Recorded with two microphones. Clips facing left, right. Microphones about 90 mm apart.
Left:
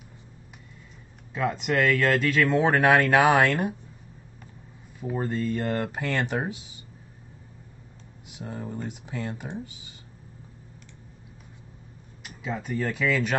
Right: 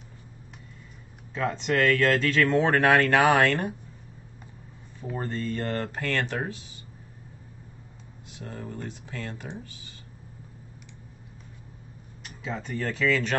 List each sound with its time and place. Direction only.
1.3 s speech: 10° left (ahead or behind)
5.1 s speech: 5° left (ahead or behind)
8.3 s speech: 15° left (ahead or behind)
12.2 s speech: 5° left (ahead or behind)